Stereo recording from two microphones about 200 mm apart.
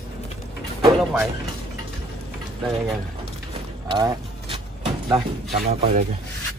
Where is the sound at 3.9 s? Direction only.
25° right (ahead or behind).